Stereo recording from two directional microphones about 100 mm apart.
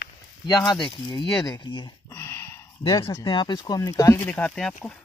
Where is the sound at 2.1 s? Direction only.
25° left (ahead or behind).